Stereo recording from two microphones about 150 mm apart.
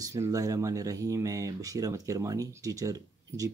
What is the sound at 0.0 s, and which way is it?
Speech, 20° right (ahead or behind).